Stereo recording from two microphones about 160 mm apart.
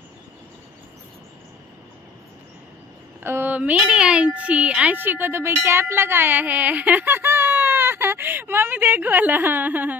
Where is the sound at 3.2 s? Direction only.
15° right (ahead or behind).